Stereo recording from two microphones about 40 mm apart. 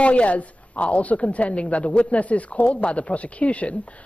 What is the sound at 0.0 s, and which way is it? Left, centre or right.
A woman's voice, left.